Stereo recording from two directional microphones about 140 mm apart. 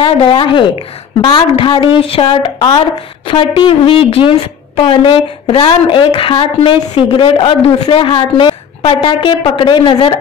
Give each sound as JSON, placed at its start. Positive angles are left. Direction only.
{"t": 0.0, "sound": "a woman's voice", "side_deg": 40}